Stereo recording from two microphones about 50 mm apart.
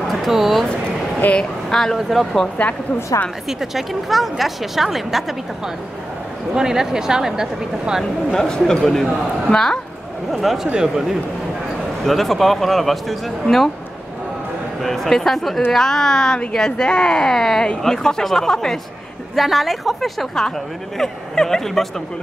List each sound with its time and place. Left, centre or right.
0.1 s a sound: centre
1.2 s speech: left
1.7 s a woman's voice: centre
3.4 s a woman's voice: centre
6.5 s speech: centre
8.3 s speech: centre
10.3 s a woman's voice: centre
12.1 s a woman's voice: centre
14.8 s a woman's voice: centre
19.3 s a woman's voice: centre